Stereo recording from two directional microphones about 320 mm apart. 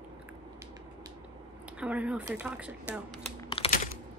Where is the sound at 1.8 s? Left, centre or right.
Centre.